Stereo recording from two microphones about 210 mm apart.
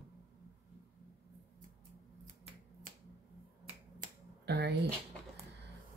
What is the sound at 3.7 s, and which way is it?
Finger snapping, 35° right (ahead or behind).